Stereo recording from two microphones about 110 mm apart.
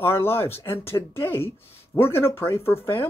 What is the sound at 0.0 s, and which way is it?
Speech, 20° left (ahead or behind).